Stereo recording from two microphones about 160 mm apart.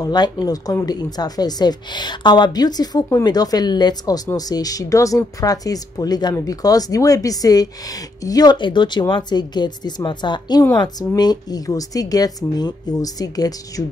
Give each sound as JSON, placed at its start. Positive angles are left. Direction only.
{"t": 0.0, "sound": "a woman's voice", "side_deg": 25}